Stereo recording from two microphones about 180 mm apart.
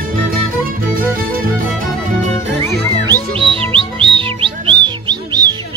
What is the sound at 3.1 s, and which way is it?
Music, 30° right (ahead or behind).